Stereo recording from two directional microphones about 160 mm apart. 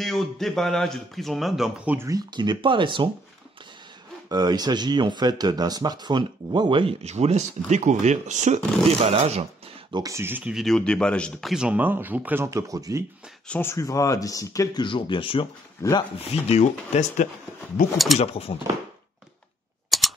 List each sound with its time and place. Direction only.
0.0 s speech: centre (ahead or behind)
2.0 s speech: 20° right (ahead or behind)
4.3 s speech: 25° right (ahead or behind)
9.9 s speech: 20° right (ahead or behind)
10.6 s speech: 5° left (ahead or behind); by 13.0 s 20° right (ahead or behind)
13.5 s speech: 15° left (ahead or behind); by 17.3 s 45° left (ahead or behind)
17.9 s speech: centre (ahead or behind)
18.2 s speech: 40° left (ahead or behind)
19.9 s a sound: centre (ahead or behind)